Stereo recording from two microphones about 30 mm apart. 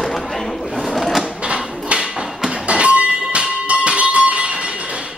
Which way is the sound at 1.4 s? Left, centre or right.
Right.